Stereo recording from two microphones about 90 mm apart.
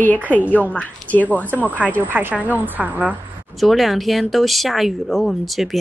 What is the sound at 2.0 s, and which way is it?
A woman's voice, 20° right (ahead or behind).